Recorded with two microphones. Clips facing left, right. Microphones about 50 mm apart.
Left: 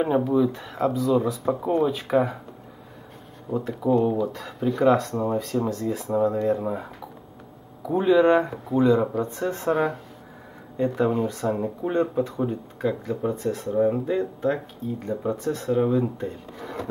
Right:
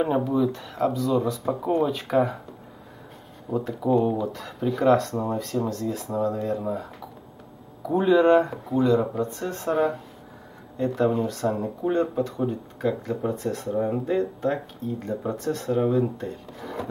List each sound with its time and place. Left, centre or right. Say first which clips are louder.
0.0 s speech: left 2 dB; centre
3.4 s speech: left 1 dB; centre
6.1 s speech: left 5 dB; centre
7.8 s speech: even; centre
8.7 s speech: left 1 dB; centre